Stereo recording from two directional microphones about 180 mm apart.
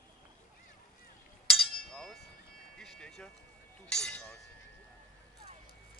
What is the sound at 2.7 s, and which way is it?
Speech, 5° left (ahead or behind).